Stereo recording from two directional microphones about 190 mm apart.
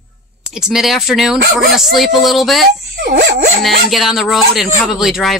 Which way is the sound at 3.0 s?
55° right (ahead or behind).